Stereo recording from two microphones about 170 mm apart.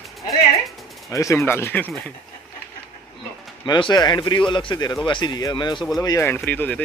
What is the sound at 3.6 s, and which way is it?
Speech, 25° left (ahead or behind).